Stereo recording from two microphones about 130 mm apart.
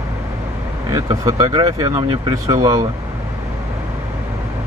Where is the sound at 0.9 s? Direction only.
30° right (ahead or behind).